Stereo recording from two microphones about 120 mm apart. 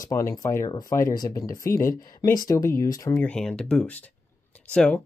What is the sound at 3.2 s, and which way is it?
Speech, 5° left (ahead or behind).